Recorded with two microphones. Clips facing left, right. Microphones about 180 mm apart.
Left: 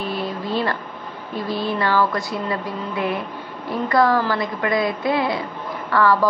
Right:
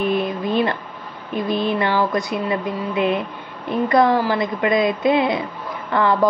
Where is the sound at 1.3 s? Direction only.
20° right (ahead or behind).